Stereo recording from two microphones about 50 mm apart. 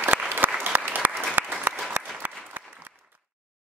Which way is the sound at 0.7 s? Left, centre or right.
Right.